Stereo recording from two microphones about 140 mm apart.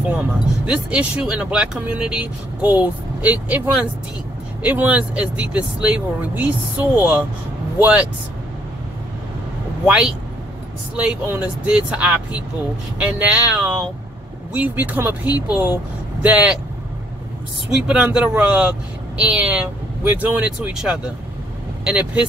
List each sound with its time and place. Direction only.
0.1 s speech: 10° right (ahead or behind)
9.8 s speech: 5° right (ahead or behind)
17.6 s speech: 5° right (ahead or behind)